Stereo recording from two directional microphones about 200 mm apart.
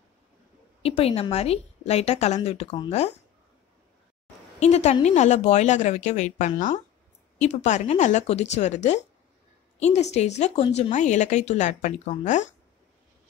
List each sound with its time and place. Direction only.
0.8 s a woman's voice: 30° left (ahead or behind)
4.6 s a woman's voice: 35° left (ahead or behind)